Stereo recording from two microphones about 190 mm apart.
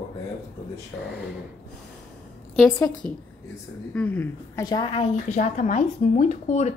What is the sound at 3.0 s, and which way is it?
Speech, 10° left (ahead or behind).